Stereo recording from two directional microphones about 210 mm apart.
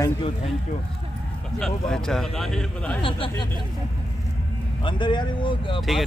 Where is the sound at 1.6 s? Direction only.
5° left (ahead or behind).